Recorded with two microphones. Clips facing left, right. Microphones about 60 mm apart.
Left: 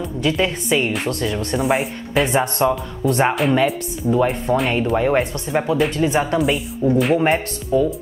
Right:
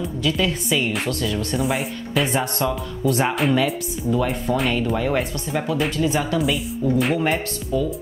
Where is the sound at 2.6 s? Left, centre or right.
Left.